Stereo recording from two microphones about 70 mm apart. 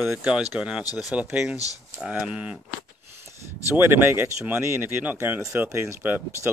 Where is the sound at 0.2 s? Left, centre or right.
Centre.